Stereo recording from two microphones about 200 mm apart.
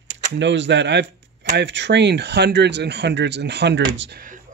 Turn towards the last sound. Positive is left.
turn(degrees=-65)  # may be behind; listen again after turning